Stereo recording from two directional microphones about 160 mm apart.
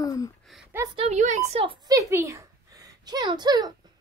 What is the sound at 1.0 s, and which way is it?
Speech, 45° right (ahead or behind).